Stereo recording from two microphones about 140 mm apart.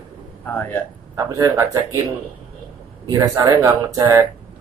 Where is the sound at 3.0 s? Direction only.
25° right (ahead or behind).